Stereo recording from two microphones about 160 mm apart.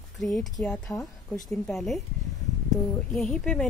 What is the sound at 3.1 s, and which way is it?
Speech, 5° left (ahead or behind).